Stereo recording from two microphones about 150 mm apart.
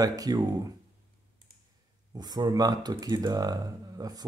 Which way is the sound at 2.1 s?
25° right (ahead or behind).